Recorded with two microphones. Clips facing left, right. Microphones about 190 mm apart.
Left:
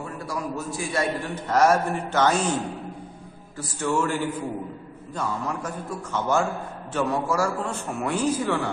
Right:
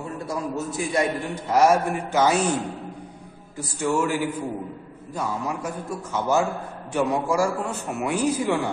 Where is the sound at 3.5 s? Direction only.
10° right (ahead or behind).